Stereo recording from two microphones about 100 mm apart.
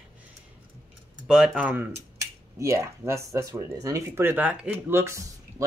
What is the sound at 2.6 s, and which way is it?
Speech, 30° right (ahead or behind).